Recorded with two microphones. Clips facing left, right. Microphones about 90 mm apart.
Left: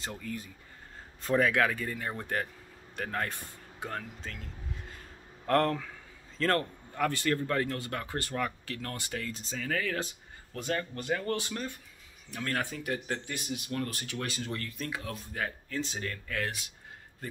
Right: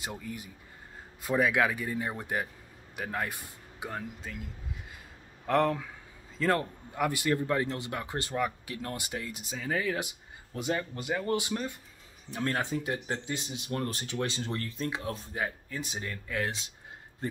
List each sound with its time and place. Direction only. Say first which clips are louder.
0.0 s speech: even; 15° right (ahead or behind)
5.5 s speech: even; 5° right (ahead or behind); by 17.4 s 25° right (ahead or behind)